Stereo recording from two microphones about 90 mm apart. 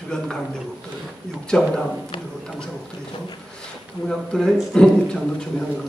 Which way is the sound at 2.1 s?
70° left (ahead or behind).